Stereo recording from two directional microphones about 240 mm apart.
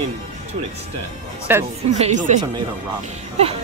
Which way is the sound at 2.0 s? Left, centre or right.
Right.